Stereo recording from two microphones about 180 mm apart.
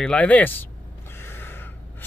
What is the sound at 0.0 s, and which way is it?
Speech, 5° left (ahead or behind).